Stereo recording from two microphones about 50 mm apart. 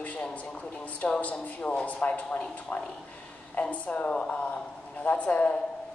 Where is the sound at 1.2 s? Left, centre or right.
Left.